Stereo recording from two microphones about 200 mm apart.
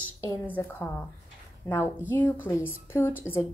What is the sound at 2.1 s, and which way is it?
A woman's voice, 10° left (ahead or behind).